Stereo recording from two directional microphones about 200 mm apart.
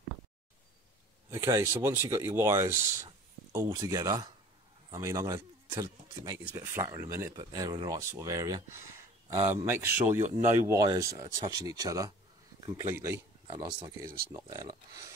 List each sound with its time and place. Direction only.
1.3 s speech: 15° right (ahead or behind)